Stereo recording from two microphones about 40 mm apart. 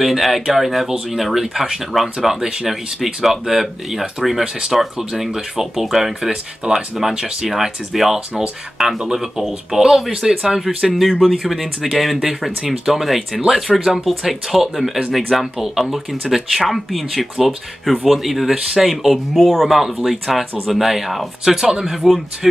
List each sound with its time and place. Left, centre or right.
0.0 s speech: centre
6.6 s speech: centre